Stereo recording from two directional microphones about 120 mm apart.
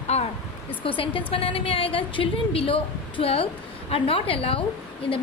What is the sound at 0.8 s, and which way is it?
A woman's voice, 45° left (ahead or behind).